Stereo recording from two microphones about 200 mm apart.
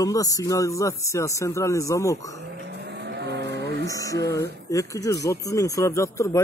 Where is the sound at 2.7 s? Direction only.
55° right (ahead or behind).